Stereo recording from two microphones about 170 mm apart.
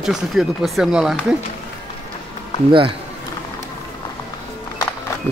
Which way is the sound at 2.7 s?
30° right (ahead or behind).